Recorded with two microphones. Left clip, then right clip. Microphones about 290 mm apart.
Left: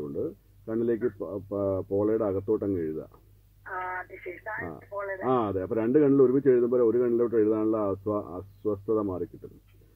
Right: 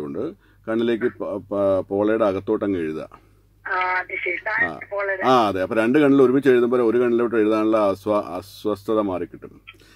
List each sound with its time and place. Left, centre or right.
0.0 s speech: right
3.6 s telephone: right
4.6 s speech: right